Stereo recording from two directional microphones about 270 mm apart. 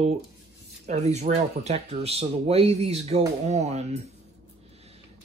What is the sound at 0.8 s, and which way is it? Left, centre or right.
Speech, right.